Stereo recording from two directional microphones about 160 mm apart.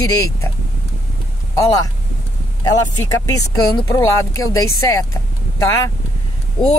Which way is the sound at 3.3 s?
20° left (ahead or behind).